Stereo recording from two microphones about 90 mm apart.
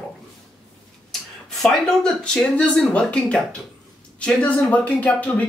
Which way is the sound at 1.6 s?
5° left (ahead or behind).